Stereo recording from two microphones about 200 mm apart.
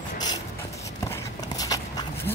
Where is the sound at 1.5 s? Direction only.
20° left (ahead or behind).